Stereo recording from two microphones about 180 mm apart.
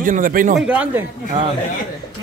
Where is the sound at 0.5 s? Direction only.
5° right (ahead or behind).